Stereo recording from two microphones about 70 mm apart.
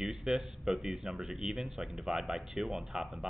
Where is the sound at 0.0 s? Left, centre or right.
Centre.